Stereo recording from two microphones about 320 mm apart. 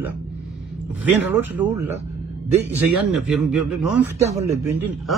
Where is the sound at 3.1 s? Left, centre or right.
Centre.